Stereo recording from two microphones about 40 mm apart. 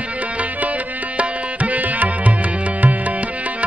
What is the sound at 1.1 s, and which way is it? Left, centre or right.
Music, right.